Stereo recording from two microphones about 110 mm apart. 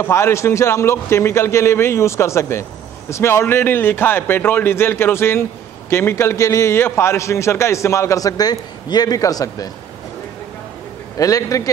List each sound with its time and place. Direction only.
0.0 s a man's voice: 25° left (ahead or behind)
11.1 s a man's voice: 30° left (ahead or behind)